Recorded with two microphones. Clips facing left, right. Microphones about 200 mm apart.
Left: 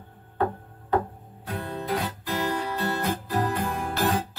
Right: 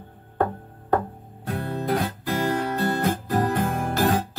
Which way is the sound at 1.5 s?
50° right (ahead or behind).